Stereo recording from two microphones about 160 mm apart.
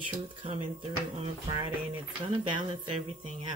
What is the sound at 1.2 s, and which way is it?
Speech, 30° right (ahead or behind).